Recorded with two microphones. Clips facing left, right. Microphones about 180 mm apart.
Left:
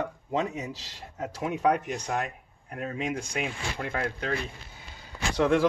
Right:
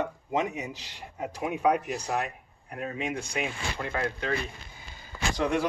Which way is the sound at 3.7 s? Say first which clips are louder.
Even; 50° left (ahead or behind).